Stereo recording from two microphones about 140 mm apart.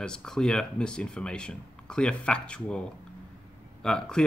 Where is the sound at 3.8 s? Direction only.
5° left (ahead or behind).